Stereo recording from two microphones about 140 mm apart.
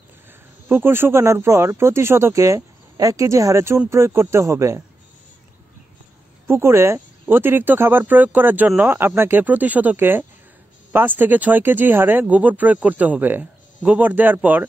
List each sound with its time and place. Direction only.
0.7 s speech: 15° right (ahead or behind)
6.4 s speech: 20° right (ahead or behind)